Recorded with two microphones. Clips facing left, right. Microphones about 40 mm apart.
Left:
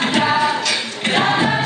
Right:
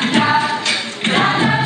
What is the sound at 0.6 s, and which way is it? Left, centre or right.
A capella, right.